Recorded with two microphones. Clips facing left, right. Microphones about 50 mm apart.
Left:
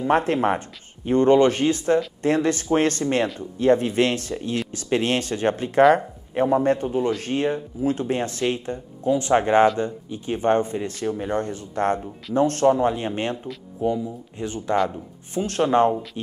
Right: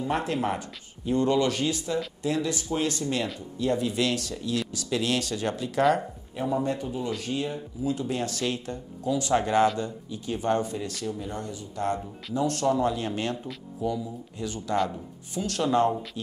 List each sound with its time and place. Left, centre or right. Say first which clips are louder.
0.0 s speech: left 7 dB; left
6.3 s speech: left 8 dB; left